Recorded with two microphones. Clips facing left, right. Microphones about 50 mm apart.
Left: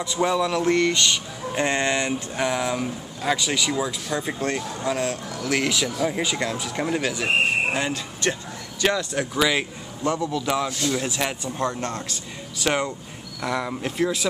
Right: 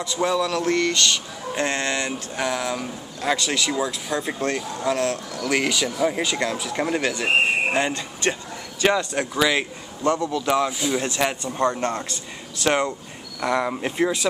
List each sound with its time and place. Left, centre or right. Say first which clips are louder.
0.4 s speech: left 1 dB; centre
8.8 s speech: right 2 dB; centre
9.2 s speech: right 1 dB; centre